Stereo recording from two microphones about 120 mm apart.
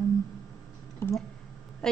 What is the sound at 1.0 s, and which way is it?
Speech, 20° left (ahead or behind).